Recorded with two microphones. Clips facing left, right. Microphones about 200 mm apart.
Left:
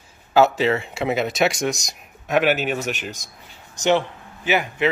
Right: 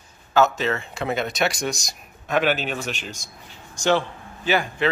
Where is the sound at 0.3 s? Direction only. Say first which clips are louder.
Left 3 dB; 10° left (ahead or behind).